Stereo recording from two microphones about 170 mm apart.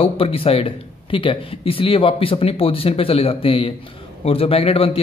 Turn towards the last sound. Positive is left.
turn(degrees=35)  # may be behind; listen again after turning